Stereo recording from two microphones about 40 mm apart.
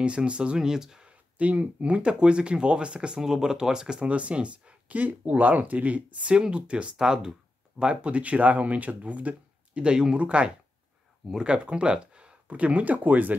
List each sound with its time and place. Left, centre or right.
0.0 s speech: right
0.6 s speech: centre
1.4 s speech: right; by 4.1 s centre
4.1 s speech: right
7.0 s speech: centre
7.8 s speech: right
9.8 s speech: centre
10.1 s speech: right
12.4 s speech: right